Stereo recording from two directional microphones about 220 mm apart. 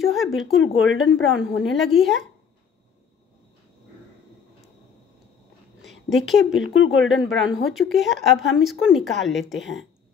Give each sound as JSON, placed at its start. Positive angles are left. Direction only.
{"t": 0.0, "sound": "speech", "side_deg": 0}
{"t": 1.1, "sound": "speech", "side_deg": 60}
{"t": 1.8, "sound": "speech", "side_deg": 0}
{"t": 5.8, "sound": "a sound", "side_deg": 0}
{"t": 6.7, "sound": "speech", "side_deg": 65}
{"t": 7.6, "sound": "speech", "side_deg": 0}